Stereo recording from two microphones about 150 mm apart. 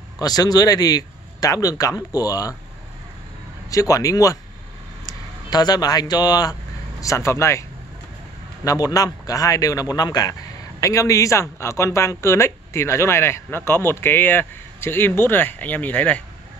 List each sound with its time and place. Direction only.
0.2 s a man's voice: 25° left (ahead or behind)
3.7 s a man's voice: 20° left (ahead or behind)
8.6 s a man's voice: 25° left (ahead or behind)